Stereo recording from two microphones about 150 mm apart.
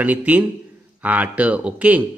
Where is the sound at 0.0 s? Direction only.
10° right (ahead or behind).